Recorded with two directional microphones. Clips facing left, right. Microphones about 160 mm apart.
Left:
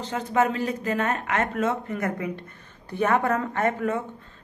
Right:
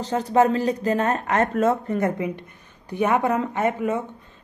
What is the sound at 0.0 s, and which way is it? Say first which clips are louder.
Speech: right 5 dB; 35° right (ahead or behind).